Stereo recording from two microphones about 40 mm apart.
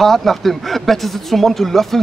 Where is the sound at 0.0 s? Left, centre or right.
Centre.